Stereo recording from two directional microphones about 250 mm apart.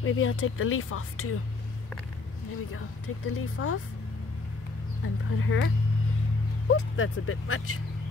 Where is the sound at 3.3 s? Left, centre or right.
Left.